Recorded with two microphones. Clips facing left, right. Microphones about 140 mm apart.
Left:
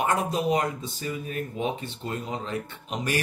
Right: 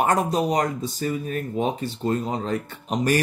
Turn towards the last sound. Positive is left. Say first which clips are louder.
# right 7 dB
turn(degrees=-45)  # may be behind; listen again after turning